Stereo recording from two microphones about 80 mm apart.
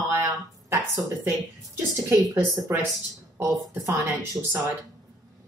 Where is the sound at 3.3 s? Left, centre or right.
Right.